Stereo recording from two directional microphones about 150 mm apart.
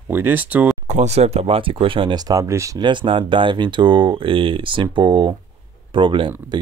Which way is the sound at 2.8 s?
30° right (ahead or behind).